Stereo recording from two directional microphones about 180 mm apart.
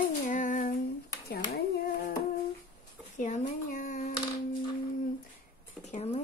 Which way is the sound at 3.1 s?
45° left (ahead or behind).